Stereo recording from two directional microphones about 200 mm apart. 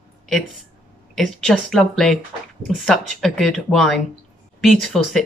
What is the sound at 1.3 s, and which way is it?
Speech, centre (ahead or behind).